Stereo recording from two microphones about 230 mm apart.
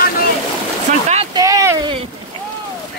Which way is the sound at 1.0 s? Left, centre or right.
Right.